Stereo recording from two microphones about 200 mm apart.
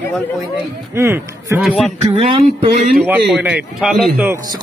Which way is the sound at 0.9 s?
15° right (ahead or behind).